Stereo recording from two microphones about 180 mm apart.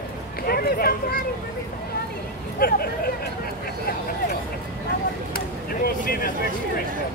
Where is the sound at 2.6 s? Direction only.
55° left (ahead or behind).